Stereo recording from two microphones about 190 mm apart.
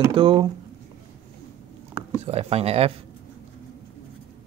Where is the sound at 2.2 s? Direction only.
35° right (ahead or behind).